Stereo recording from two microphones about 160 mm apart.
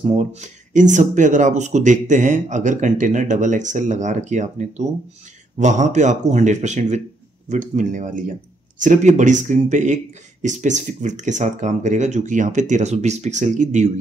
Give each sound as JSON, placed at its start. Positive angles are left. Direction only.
{"t": 0.0, "sound": "speech", "side_deg": -45}